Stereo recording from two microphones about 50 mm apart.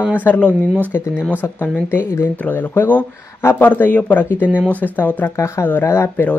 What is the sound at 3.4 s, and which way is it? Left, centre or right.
Speech, left.